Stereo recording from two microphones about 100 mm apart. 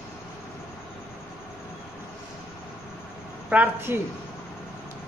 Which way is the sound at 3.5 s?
20° right (ahead or behind).